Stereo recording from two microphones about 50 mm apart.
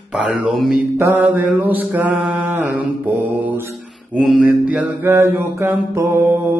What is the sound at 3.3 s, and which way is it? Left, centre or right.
Mantra, right.